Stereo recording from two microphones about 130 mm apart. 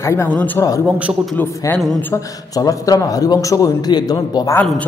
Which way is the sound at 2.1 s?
25° left (ahead or behind).